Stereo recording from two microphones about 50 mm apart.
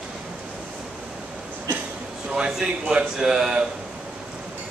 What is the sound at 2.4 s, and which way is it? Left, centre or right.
A man's voice, centre.